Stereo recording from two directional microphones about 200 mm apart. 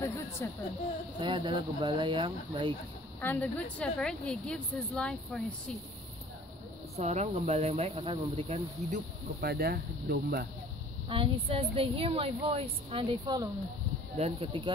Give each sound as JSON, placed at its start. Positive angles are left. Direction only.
{"t": 0.4, "sound": "a woman's voice", "side_deg": 10}
{"t": 1.2, "sound": "a woman's voice", "side_deg": -25}
{"t": 3.2, "sound": "a woman's voice", "side_deg": 10}
{"t": 7.0, "sound": "speech", "side_deg": -35}
{"t": 8.9, "sound": "speech", "side_deg": -50}
{"t": 11.1, "sound": "a woman's voice", "side_deg": -25}